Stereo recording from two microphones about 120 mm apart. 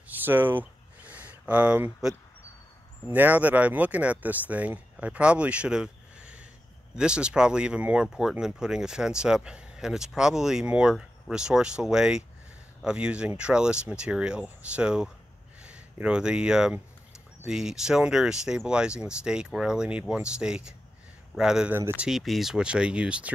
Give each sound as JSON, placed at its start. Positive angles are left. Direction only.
{"t": 0.2, "sound": "a sound", "side_deg": -15}
{"t": 3.1, "sound": "speech", "side_deg": -15}
{"t": 21.7, "sound": "speech", "side_deg": -20}
{"t": 22.0, "sound": "speech", "side_deg": 0}